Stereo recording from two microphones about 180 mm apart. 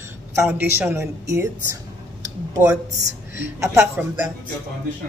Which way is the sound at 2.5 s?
15° right (ahead or behind).